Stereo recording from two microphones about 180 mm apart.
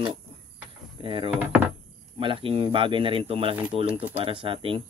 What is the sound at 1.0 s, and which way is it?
Speech, 30° right (ahead or behind).